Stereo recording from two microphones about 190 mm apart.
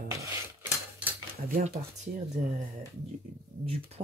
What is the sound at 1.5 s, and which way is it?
Speech, 50° right (ahead or behind).